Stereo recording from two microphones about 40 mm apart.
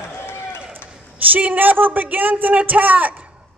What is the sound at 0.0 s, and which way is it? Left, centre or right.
Run, left.